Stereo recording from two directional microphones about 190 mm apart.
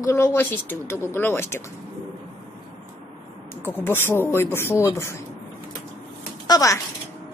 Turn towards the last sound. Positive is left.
turn(degrees=20)  # may be behind; listen again after turning